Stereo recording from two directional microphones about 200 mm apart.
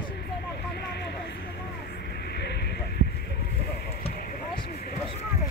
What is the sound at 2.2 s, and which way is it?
Vehicle, 55° left (ahead or behind).